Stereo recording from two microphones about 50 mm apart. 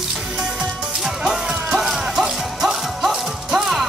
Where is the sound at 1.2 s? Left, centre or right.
Centre.